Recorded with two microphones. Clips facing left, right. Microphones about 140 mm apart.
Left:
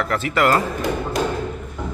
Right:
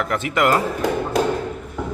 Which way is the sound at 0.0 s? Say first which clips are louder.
Even; 15° right (ahead or behind).